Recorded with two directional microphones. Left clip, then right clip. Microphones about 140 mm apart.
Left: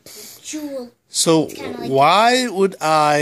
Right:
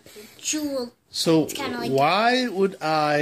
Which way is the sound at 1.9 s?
35° left (ahead or behind).